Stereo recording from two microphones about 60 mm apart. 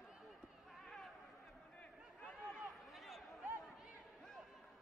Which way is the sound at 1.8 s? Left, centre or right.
Left.